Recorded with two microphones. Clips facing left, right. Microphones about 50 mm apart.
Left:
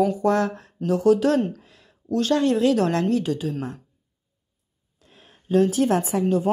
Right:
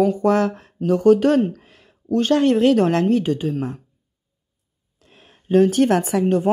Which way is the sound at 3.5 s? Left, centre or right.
Centre.